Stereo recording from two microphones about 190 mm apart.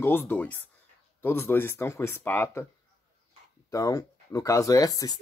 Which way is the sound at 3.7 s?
15° left (ahead or behind).